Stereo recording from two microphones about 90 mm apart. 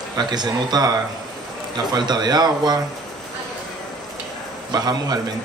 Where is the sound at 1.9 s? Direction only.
50° right (ahead or behind).